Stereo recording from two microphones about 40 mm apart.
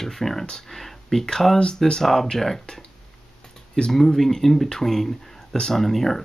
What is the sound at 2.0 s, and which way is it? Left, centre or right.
Speech, centre.